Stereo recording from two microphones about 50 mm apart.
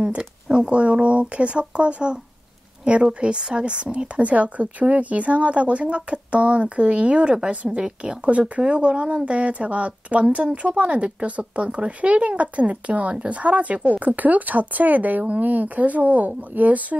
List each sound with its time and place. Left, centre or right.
0.5 s a woman's voice: right